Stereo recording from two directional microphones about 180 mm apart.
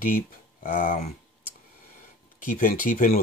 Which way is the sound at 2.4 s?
50° left (ahead or behind).